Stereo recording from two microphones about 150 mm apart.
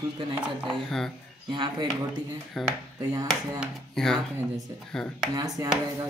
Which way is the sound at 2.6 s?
Centre (ahead or behind).